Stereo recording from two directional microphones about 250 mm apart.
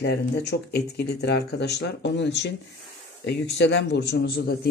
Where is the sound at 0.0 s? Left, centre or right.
Left.